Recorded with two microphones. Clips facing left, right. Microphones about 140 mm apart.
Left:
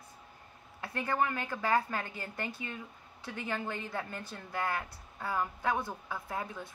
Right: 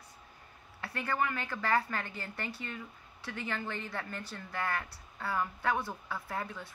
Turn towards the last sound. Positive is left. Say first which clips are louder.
# even
turn(degrees=20)  # may be behind; listen again after turning